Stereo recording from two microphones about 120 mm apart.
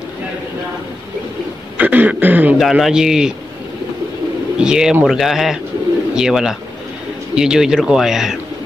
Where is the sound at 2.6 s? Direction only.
Centre (ahead or behind).